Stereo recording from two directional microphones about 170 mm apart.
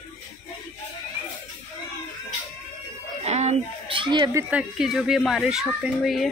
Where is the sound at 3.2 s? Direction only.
40° right (ahead or behind).